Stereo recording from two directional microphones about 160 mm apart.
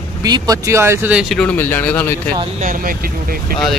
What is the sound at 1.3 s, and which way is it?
Speech, 10° left (ahead or behind).